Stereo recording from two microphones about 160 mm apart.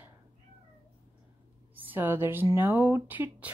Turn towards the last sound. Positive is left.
turn(degrees=-10)  # may be behind; listen again after turning